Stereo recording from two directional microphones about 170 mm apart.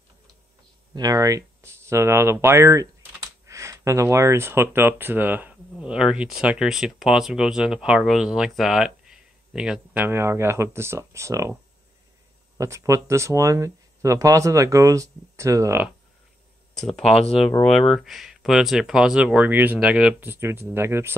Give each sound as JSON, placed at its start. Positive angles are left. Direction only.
{"t": 0.9, "sound": "speech", "side_deg": -20}
{"t": 12.5, "sound": "speech", "side_deg": -15}
{"t": 16.8, "sound": "speech", "side_deg": 0}